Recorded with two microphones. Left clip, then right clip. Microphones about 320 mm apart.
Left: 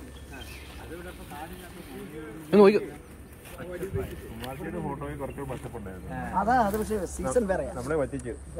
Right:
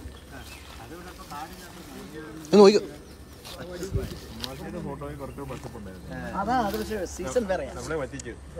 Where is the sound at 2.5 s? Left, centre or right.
Centre.